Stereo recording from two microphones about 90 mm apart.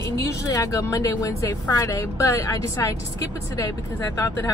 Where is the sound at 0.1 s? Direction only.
40° left (ahead or behind).